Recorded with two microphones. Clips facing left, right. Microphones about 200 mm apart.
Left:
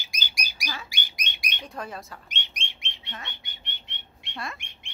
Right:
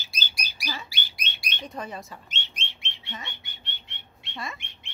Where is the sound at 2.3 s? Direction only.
15° left (ahead or behind).